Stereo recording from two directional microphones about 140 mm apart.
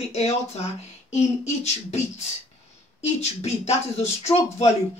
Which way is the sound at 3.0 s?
50° left (ahead or behind).